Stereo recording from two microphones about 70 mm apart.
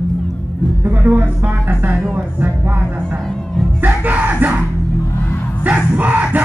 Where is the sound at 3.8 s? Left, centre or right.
Right.